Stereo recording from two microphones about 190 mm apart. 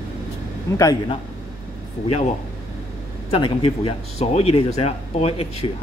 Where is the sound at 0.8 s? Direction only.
20° left (ahead or behind).